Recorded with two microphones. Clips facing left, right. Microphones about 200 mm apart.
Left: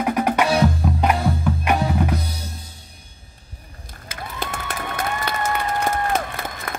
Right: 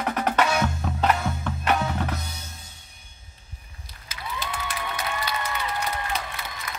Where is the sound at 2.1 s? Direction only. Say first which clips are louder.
Left 8 dB; 35° left (ahead or behind).